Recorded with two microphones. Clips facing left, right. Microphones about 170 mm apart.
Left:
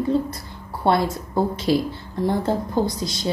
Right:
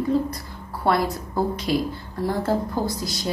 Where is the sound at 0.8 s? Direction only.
25° left (ahead or behind).